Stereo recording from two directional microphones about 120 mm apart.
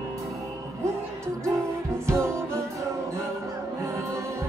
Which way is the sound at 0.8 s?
25° right (ahead or behind).